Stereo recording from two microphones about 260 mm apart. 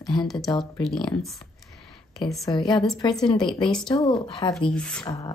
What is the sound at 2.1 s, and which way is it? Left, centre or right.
Speech, centre.